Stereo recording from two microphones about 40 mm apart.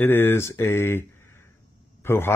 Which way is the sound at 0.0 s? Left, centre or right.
Left.